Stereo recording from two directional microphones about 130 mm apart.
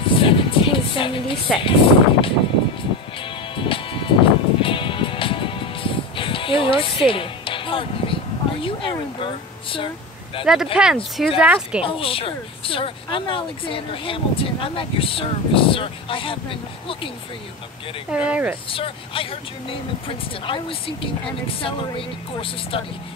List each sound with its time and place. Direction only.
0.0 s music: 40° left (ahead or behind)
3.2 s music: 40° left (ahead or behind)
7.1 s a sound: 40° left (ahead or behind)
10.4 s speech: 5° right (ahead or behind)
11.8 s speech: 45° left (ahead or behind)
18.1 s speech: 10° right (ahead or behind)
18.7 s speech: 45° left (ahead or behind)
20.4 s speech: 40° left (ahead or behind)